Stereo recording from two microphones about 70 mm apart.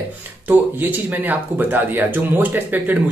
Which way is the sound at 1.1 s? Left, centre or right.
Right.